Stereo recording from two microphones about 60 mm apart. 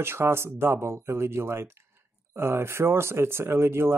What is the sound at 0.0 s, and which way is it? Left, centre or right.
Speech, right.